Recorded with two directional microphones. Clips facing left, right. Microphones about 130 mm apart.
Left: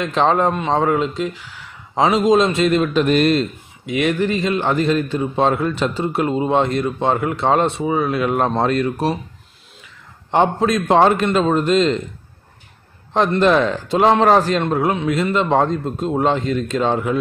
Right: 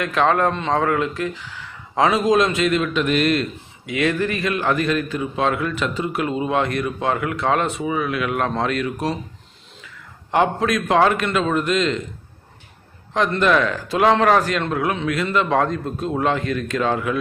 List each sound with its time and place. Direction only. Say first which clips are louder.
0.0 s speech: left 2 dB; 25° left (ahead or behind)
3.8 s a man's voice: left 2 dB; 20° left (ahead or behind)
10.3 s a man's voice: left 2 dB; 25° left (ahead or behind)
13.4 s speech: left 3 dB; 30° left (ahead or behind)